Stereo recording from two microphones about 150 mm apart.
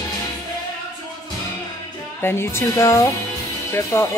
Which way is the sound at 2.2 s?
15° left (ahead or behind).